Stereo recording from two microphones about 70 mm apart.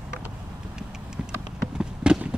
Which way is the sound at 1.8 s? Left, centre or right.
Centre.